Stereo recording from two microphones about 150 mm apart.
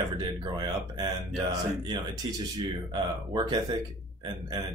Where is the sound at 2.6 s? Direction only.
30° right (ahead or behind).